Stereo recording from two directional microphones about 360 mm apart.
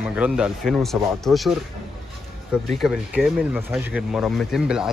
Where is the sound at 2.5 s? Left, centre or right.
Centre.